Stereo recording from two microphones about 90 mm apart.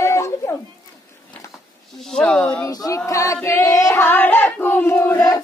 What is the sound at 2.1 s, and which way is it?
Child singing, 10° left (ahead or behind).